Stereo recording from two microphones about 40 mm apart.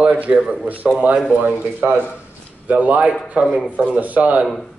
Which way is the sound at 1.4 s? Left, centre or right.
Right.